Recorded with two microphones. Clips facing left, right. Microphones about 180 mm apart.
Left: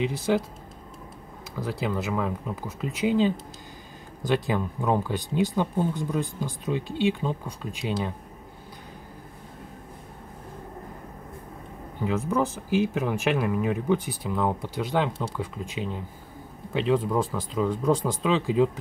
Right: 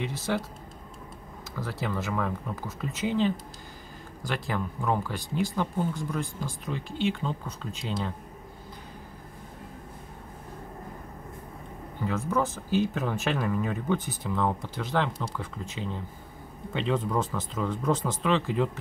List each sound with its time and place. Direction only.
0.0 s speech: 15° left (ahead or behind)
1.6 s speech: 15° left (ahead or behind)
12.0 s speech: 15° left (ahead or behind)